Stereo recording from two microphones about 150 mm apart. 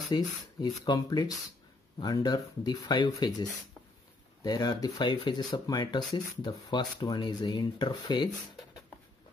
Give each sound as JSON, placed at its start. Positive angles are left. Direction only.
{"t": 0.1, "sound": "speech", "side_deg": 30}